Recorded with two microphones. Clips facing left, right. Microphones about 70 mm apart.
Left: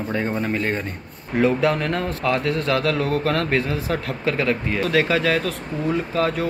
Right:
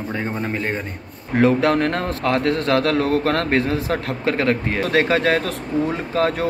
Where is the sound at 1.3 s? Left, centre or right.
Right.